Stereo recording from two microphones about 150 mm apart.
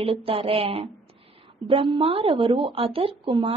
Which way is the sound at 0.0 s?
40° right (ahead or behind).